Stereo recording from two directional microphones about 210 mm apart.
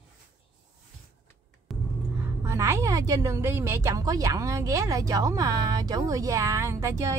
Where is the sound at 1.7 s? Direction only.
Centre (ahead or behind).